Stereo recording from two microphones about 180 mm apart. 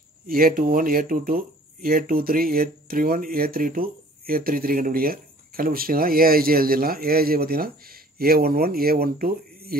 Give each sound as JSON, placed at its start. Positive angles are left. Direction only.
{"t": 0.3, "sound": "speech", "side_deg": -50}